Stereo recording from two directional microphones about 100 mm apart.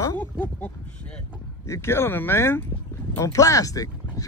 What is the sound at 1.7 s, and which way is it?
Speech, 25° left (ahead or behind).